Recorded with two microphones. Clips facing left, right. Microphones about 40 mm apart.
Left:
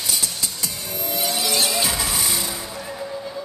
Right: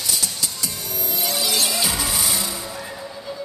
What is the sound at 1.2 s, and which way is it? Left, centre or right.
Vehicle, left.